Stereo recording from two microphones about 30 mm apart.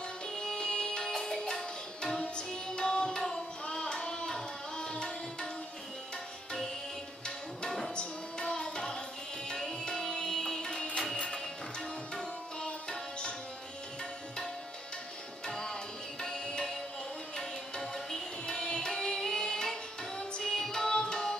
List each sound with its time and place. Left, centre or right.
0.4 s music: left
1.1 s music: centre
2.0 s music: left
7.2 s tabla: left
7.9 s music: left
9.7 s music: left
15.4 s tabla: left
17.4 s music: centre
20.5 s music: centre
20.9 s tabla: left